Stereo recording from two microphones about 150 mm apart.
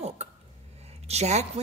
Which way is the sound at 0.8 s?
45° right (ahead or behind).